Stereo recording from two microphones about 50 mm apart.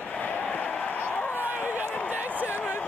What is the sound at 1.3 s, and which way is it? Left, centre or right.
Run, right.